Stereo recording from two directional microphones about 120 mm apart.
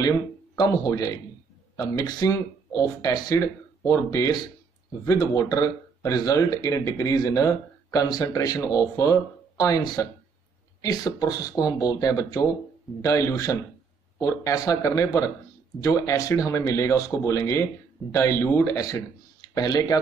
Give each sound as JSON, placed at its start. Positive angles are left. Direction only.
{"t": 0.6, "sound": "speech", "side_deg": 30}